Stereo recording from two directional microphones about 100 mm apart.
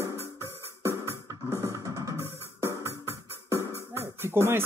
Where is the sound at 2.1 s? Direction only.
25° left (ahead or behind).